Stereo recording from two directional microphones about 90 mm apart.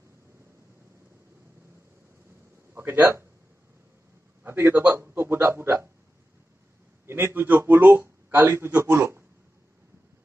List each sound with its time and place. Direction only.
2.7 s a man's voice: 25° right (ahead or behind)
4.4 s a man's voice: 25° right (ahead or behind)
7.1 s a man's voice: 25° right (ahead or behind)